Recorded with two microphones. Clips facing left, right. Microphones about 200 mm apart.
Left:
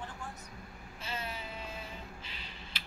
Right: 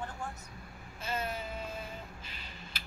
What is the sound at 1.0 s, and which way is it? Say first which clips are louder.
Vehicle: right 5 dB; 45° right (ahead or behind).